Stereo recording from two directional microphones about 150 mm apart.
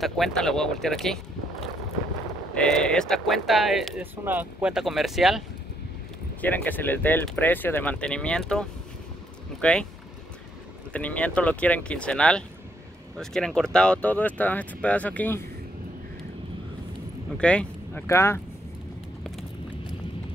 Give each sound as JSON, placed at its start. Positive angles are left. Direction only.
{"t": 0.0, "sound": "speech", "side_deg": 0}
{"t": 2.5, "sound": "speech", "side_deg": 5}
{"t": 4.0, "sound": "speech", "side_deg": -10}
{"t": 6.4, "sound": "speech", "side_deg": 10}
{"t": 10.9, "sound": "speech", "side_deg": 10}
{"t": 17.4, "sound": "speech", "side_deg": 5}